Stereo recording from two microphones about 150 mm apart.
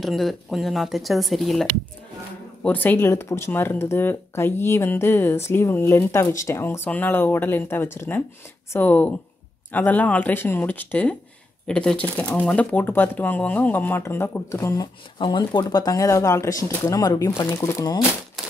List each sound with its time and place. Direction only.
0.0 s speech: centre (ahead or behind)
2.6 s speech: 10° left (ahead or behind)
15.1 s speech: 30° left (ahead or behind)